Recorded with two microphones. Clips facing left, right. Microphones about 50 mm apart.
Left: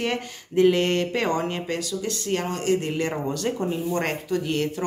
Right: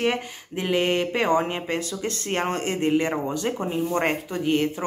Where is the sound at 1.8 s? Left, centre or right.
Right.